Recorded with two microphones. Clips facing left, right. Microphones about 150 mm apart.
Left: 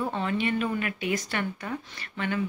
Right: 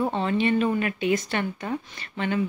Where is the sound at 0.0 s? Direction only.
25° right (ahead or behind).